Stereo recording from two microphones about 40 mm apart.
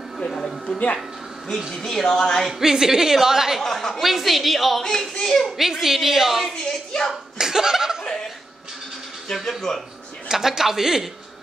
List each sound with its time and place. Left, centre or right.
0.2 s a sound: centre
1.8 s a woman's voice: centre
2.6 s a woman's voice: centre
3.6 s a woman's voice: centre
4.0 s a woman's voice: centre
5.6 s a woman's voice: centre
6.5 s a woman's voice: centre
7.3 s a woman's voice: centre
9.3 s a woman's voice: centre
10.2 s a woman's voice: centre